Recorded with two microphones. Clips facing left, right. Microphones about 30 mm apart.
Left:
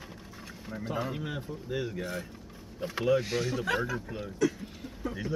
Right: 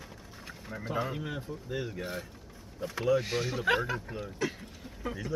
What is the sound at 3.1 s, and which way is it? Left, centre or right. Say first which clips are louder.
Speech: left 1 dB; centre.